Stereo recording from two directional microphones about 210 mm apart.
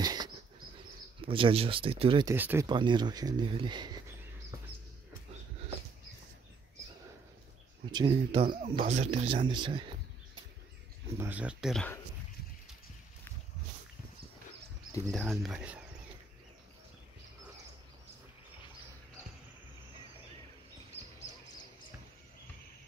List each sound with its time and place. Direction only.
0.0 s bird flight: 20° right (ahead or behind)
1.2 s speech: 25° right (ahead or behind)
2.3 s speech: 10° right (ahead or behind)
2.7 s speech: 20° right (ahead or behind)
7.9 s speech: 20° right (ahead or behind)
11.1 s speech: 10° right (ahead or behind)
15.0 s speech: centre (ahead or behind)